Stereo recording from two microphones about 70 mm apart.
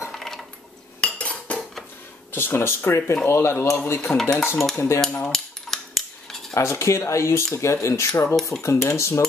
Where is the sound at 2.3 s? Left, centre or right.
Left.